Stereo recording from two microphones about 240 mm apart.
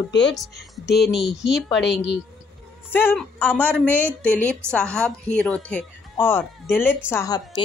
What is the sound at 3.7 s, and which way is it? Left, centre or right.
Speech, centre.